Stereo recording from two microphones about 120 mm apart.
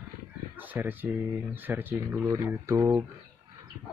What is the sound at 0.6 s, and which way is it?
Speech, 15° right (ahead or behind).